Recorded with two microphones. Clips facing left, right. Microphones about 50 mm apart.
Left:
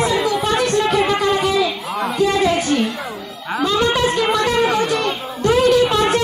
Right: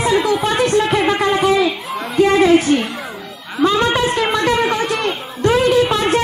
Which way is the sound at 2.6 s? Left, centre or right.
Right.